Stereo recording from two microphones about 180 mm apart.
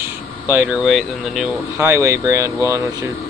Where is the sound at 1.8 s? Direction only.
15° right (ahead or behind).